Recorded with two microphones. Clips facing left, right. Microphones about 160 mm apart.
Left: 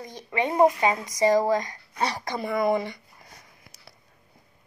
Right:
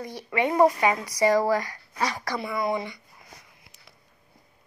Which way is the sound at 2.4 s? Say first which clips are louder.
Left 5 dB; 50° left (ahead or behind).